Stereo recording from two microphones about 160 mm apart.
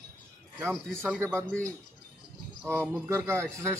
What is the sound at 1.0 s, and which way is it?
Speech, 15° right (ahead or behind).